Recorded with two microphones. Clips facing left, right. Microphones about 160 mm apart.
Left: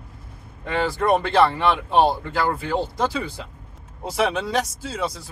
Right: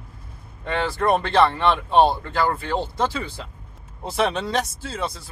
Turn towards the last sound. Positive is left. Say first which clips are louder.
# left 1 dB
turn(degrees=10)  # may be behind; listen again after turning